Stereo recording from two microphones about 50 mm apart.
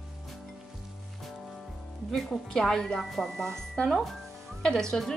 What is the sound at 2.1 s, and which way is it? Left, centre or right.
Speech, centre.